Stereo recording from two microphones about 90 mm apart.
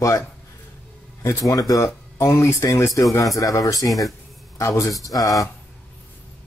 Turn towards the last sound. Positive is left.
turn(degrees=40)  # may be behind; listen again after turning